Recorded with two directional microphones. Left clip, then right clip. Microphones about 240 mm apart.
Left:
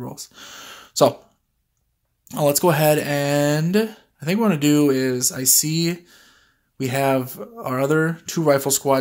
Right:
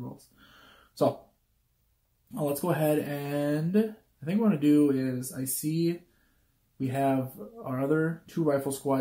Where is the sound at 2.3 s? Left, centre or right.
Left.